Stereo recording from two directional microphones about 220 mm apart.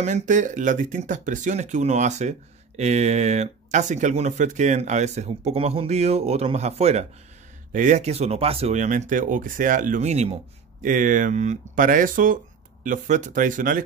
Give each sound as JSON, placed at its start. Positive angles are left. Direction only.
{"t": 0.0, "sound": "speech", "side_deg": -35}